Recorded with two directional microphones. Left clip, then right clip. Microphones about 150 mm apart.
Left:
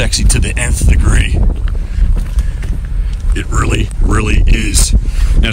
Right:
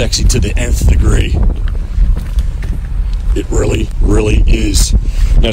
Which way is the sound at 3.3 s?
10° right (ahead or behind).